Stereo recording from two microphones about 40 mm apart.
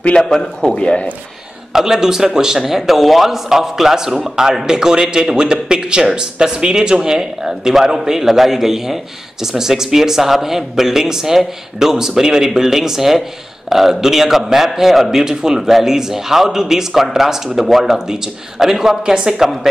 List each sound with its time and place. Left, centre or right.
0.2 s a man's voice: centre
0.7 s speech: left
1.7 s a man's voice: centre
17.9 s a man's voice: centre